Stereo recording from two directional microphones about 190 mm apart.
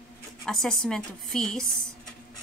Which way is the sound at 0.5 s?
5° left (ahead or behind).